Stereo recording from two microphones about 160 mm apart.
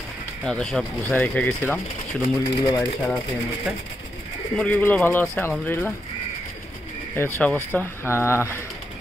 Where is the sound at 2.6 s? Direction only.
25° left (ahead or behind).